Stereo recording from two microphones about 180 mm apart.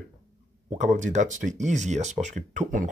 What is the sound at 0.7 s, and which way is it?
Speech, 40° right (ahead or behind).